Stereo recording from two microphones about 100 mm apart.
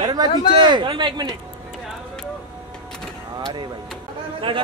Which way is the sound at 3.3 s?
50° right (ahead or behind).